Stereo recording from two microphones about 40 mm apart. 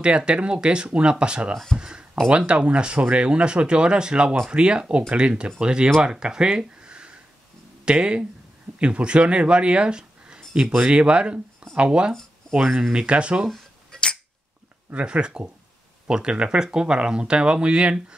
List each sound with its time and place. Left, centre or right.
0.0 s speech: right
1.8 s a sound: right
2.2 s speech: right
6.8 s a sound: right
7.8 s speech: right
12.6 s speech: centre
12.9 s speech: right
13.9 s tick-tock: left
15.0 s speech: right